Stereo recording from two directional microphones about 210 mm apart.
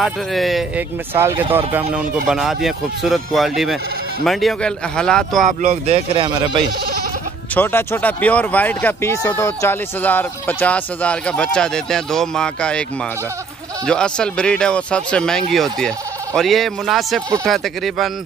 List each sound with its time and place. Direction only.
0.0 s speech: centre (ahead or behind)
5.6 s speech: 40° right (ahead or behind)
5.9 s speech: 25° right (ahead or behind)
7.5 s speech: 10° left (ahead or behind)
13.8 s speech: 5° left (ahead or behind)